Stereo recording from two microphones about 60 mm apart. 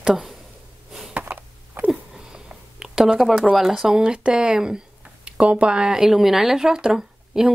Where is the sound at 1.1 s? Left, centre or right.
Right.